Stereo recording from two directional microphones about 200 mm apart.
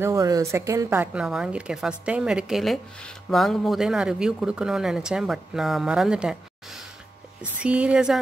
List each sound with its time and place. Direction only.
0.0 s a woman's voice: 15° right (ahead or behind)